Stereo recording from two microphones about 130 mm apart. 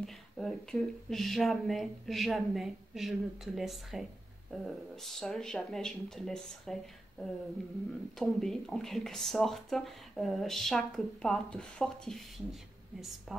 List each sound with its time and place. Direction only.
0.0 s speech: 5° left (ahead or behind)